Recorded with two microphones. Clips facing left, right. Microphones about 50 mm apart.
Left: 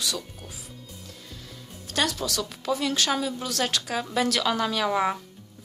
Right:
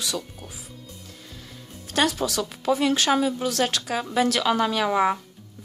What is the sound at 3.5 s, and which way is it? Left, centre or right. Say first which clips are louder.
Speech: right 3 dB; centre.